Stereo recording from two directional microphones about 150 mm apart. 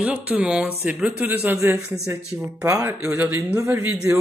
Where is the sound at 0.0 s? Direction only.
10° right (ahead or behind).